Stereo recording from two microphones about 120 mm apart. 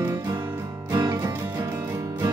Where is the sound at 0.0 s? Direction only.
20° right (ahead or behind).